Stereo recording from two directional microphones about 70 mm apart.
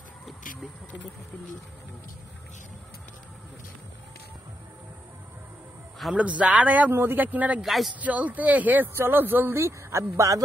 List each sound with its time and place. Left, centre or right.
6.1 s speech: centre
6.9 s speech: right
7.6 s a man's voice: centre
8.0 s speech: right